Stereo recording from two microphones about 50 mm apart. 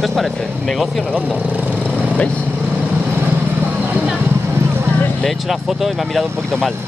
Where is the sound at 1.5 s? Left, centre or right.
Right.